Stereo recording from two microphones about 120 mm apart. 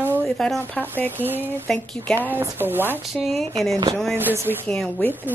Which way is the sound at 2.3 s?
20° right (ahead or behind).